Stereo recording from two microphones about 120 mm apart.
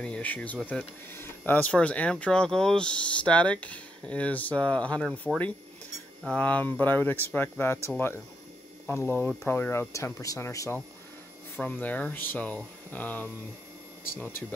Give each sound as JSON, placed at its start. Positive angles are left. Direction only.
{"t": 0.0, "sound": "speech", "side_deg": 10}